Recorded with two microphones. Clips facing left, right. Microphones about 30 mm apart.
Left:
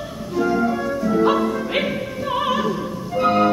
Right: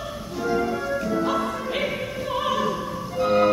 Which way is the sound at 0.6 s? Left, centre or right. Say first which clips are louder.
Left 4 dB; centre.